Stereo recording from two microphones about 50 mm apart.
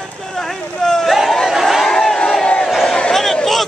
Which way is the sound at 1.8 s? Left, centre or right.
Centre.